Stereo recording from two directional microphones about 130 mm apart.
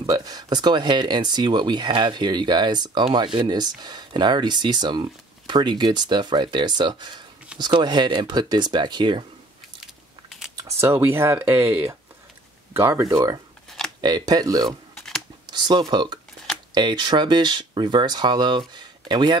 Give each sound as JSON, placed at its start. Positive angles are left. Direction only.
{"t": 0.0, "sound": "speech", "side_deg": -30}
{"t": 10.6, "sound": "speech", "side_deg": -20}
{"t": 15.0, "sound": "a sound", "side_deg": 5}
{"t": 15.5, "sound": "speech", "side_deg": -35}